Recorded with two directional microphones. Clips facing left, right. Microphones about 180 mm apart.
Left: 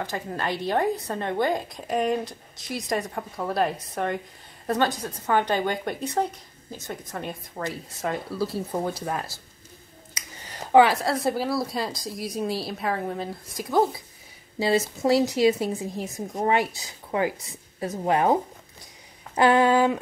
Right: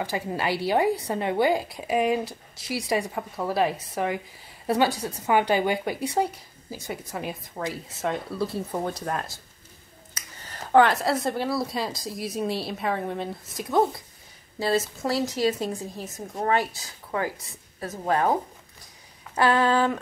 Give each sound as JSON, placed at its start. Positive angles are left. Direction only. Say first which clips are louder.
{"t": 0.0, "sound": "a woman's voice", "louder": "right 2 dB", "side_deg": -10}
{"t": 10.7, "sound": "speech", "louder": "left 1 dB", "side_deg": 5}
{"t": 14.6, "sound": "speech", "louder": "left 2 dB", "side_deg": 15}